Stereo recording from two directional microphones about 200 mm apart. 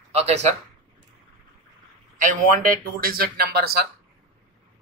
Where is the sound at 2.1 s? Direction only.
40° right (ahead or behind).